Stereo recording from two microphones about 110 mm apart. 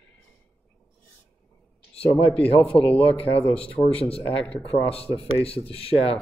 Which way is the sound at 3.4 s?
10° left (ahead or behind).